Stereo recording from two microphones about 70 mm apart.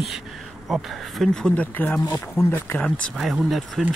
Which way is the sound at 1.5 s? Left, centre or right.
Left.